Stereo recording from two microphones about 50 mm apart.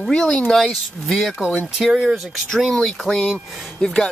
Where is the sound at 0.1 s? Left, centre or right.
Centre.